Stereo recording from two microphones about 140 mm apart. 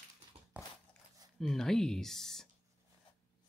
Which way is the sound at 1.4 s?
5° left (ahead or behind).